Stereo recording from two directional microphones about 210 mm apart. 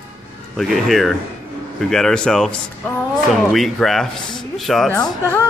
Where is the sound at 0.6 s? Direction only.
Centre (ahead or behind).